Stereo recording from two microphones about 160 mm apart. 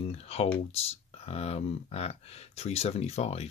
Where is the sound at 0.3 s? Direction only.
40° left (ahead or behind).